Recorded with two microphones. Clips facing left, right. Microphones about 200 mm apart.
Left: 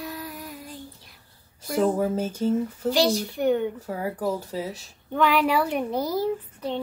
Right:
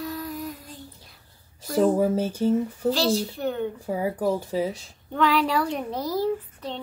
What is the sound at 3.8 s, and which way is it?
Speech, 10° right (ahead or behind).